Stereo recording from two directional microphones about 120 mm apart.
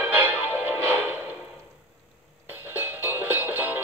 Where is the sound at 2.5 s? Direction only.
15° right (ahead or behind).